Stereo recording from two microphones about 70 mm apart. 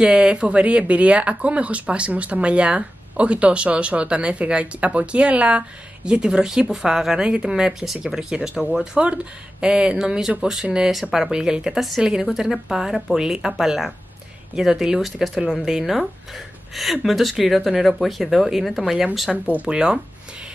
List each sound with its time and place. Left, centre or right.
0.0 s speech: centre